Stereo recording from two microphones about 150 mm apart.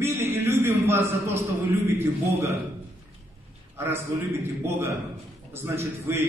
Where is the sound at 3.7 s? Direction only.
15° right (ahead or behind).